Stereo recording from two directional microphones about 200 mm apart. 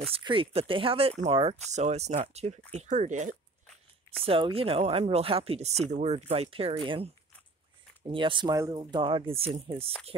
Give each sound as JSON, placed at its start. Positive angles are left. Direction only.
{"t": 0.0, "sound": "speech", "side_deg": -25}
{"t": 8.1, "sound": "speech", "side_deg": -25}